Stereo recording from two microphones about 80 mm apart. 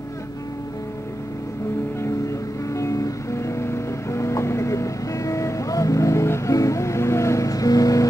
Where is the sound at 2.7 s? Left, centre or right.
Left.